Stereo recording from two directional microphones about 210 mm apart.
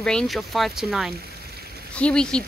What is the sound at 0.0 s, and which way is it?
Speech, 5° left (ahead or behind).